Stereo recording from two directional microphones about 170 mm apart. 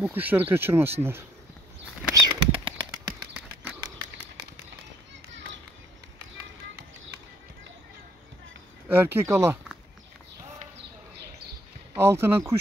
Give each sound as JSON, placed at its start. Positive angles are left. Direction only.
{"t": 0.0, "sound": "speech", "side_deg": -10}
{"t": 2.1, "sound": "bird flight", "side_deg": -25}
{"t": 8.8, "sound": "speech", "side_deg": -10}
{"t": 11.9, "sound": "speech", "side_deg": -15}